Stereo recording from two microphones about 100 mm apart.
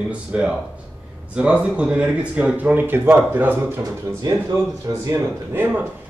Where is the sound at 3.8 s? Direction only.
40° right (ahead or behind).